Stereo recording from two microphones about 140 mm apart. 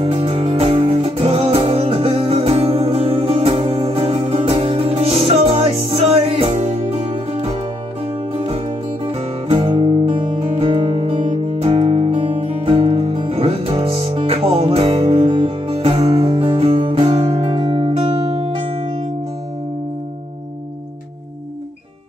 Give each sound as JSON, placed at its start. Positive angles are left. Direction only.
{"t": 0.0, "sound": "music", "side_deg": -40}
{"t": 8.3, "sound": "music", "side_deg": -40}